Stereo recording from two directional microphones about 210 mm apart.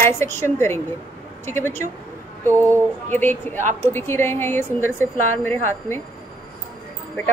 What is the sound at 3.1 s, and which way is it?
A woman's voice, 10° left (ahead or behind).